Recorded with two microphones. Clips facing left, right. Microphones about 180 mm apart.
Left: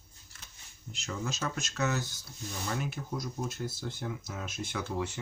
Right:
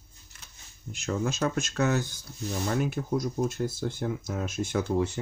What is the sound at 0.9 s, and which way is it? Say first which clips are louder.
Speech: right 8 dB; 55° right (ahead or behind).